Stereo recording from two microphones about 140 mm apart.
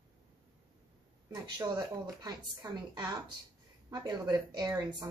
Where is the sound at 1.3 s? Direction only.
30° right (ahead or behind).